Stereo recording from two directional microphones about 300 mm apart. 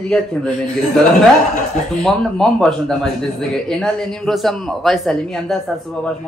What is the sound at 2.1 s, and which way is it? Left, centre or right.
A man's voice, centre.